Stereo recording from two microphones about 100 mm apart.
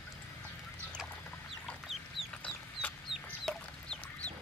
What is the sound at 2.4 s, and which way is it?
Chicken, 15° left (ahead or behind).